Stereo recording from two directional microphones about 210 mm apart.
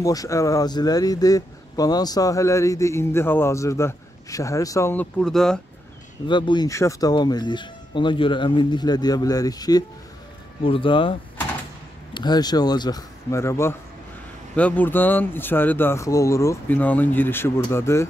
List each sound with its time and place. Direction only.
0.0 s a man's voice: 15° left (ahead or behind)
6.2 s a man's voice: 20° left (ahead or behind)